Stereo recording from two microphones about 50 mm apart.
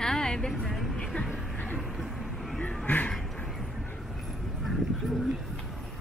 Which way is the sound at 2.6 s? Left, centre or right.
Left.